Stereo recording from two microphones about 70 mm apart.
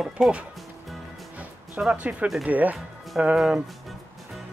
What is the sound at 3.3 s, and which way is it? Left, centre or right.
Speech, centre.